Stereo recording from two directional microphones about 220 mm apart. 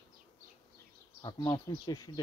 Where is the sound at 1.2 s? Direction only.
20° left (ahead or behind).